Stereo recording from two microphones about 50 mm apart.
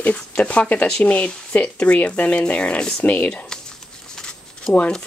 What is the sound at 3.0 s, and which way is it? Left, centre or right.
Speech, left.